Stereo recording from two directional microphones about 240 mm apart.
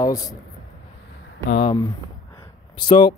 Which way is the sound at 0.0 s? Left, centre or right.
Centre.